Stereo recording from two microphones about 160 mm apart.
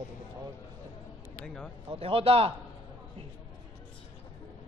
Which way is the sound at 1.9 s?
35° right (ahead or behind).